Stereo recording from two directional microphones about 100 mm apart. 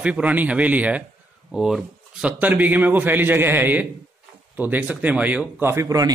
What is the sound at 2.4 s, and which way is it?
A man's voice, 15° right (ahead or behind).